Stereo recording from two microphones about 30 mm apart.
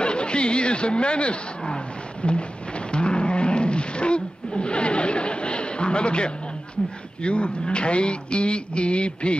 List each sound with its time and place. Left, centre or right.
0.0 s speech: left
2.2 s rain: left
2.9 s roaring cats: left
7.2 s speech: left